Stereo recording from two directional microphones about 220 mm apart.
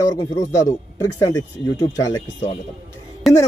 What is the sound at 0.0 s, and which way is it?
A man's voice, 15° left (ahead or behind).